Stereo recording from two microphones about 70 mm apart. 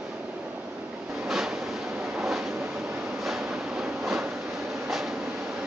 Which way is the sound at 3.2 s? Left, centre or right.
Centre.